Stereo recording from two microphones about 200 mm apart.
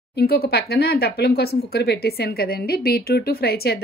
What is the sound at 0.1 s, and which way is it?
Speech, 50° left (ahead or behind).